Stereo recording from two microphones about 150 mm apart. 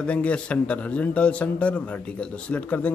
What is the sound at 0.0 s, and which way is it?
A man's voice, 10° left (ahead or behind).